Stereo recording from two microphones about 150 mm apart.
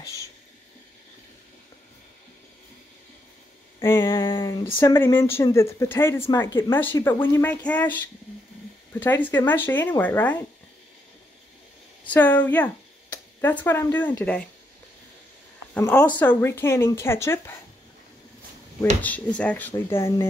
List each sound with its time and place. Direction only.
3.8 s a woman's voice: 15° left (ahead or behind)
12.1 s a woman's voice: 10° left (ahead or behind)
15.7 s a woman's voice: 15° left (ahead or behind)
19.0 s a woman's voice: 10° left (ahead or behind)